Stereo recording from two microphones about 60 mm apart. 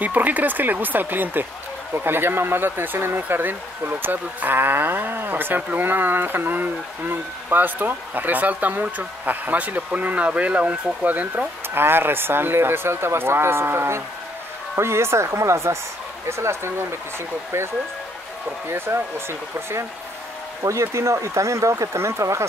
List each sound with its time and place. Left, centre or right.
0.0 s speech: right
11.8 s speech: right
18.7 s speech: right
20.6 s speech: right